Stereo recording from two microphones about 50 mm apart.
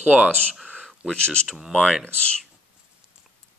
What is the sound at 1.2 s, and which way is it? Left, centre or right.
Speech, centre.